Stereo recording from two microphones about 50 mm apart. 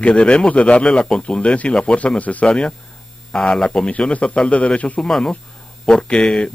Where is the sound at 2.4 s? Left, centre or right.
Centre.